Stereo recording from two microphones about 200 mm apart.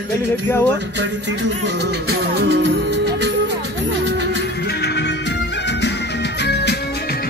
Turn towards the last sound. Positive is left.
turn(degrees=55)  # may be behind; listen again after turning